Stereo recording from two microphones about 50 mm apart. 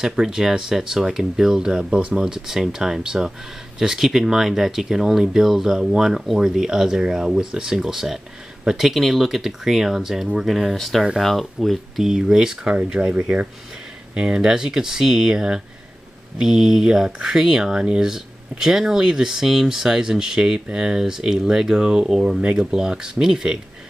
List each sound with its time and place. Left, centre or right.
0.0 s speech: centre
12.7 s speech: right